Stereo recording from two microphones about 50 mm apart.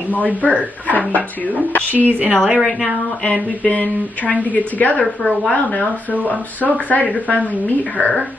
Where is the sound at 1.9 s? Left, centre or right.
Right.